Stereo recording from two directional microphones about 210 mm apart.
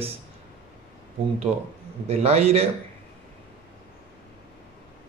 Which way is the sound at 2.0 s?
30° right (ahead or behind).